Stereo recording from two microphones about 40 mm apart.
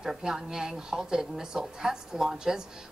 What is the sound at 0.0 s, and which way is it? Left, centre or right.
A woman's voice, centre.